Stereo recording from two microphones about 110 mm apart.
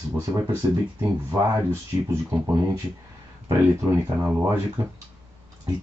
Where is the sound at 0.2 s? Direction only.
30° right (ahead or behind).